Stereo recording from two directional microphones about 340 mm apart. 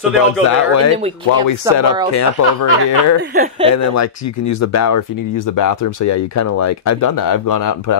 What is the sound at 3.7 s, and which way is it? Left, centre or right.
Speech, left.